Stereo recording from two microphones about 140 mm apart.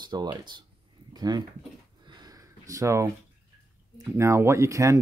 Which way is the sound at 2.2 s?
25° right (ahead or behind).